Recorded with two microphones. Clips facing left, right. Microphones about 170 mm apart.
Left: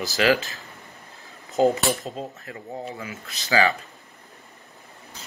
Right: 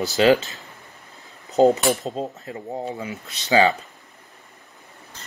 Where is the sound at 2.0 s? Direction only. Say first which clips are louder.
Right 5 dB; 35° right (ahead or behind).